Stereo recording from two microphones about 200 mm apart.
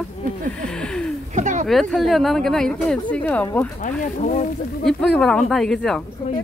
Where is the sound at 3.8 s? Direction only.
40° left (ahead or behind).